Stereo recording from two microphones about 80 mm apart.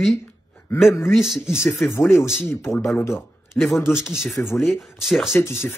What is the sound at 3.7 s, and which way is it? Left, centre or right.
Speech, left.